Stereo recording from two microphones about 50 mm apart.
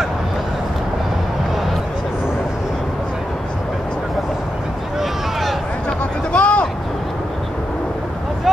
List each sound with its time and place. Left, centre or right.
5.9 s vehicle: left